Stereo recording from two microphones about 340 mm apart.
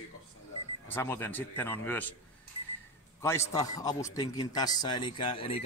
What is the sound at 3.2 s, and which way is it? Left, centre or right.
A man's voice, centre.